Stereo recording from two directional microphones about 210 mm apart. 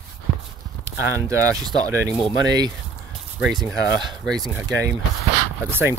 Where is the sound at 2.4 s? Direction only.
20° right (ahead or behind).